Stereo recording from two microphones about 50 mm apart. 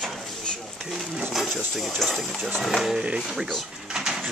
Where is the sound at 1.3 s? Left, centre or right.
Centre.